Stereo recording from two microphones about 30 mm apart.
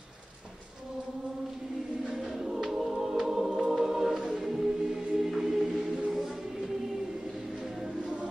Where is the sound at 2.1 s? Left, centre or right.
Centre.